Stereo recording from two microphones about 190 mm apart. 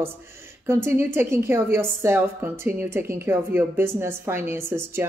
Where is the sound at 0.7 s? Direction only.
10° right (ahead or behind).